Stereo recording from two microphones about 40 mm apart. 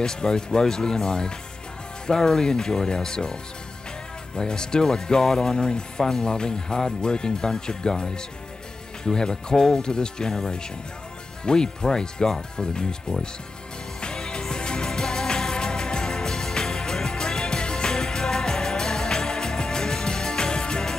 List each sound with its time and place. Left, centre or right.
0.0 s speech: centre
4.4 s speech: centre
14.0 s music: centre